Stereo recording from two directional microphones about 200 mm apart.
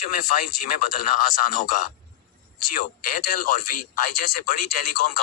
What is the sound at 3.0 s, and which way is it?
Speech, 45° left (ahead or behind).